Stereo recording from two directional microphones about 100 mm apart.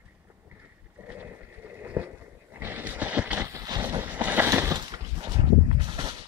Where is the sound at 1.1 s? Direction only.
20° right (ahead or behind).